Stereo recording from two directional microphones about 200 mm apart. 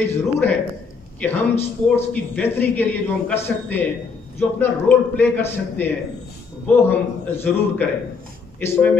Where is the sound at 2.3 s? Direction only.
10° left (ahead or behind).